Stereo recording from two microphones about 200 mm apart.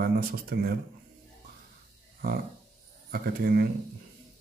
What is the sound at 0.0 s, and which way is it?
Speech, 45° right (ahead or behind).